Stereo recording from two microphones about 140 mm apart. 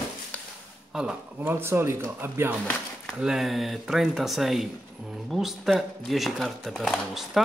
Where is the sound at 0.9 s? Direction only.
5° right (ahead or behind).